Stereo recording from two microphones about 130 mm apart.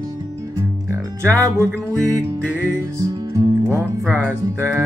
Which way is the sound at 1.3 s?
20° right (ahead or behind).